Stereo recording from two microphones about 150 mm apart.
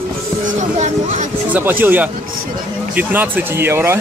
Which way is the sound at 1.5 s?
15° right (ahead or behind).